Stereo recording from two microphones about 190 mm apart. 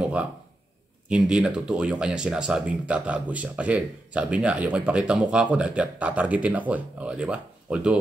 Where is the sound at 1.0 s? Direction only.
5° right (ahead or behind).